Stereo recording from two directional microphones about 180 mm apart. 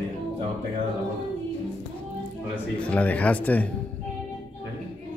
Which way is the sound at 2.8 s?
10° left (ahead or behind).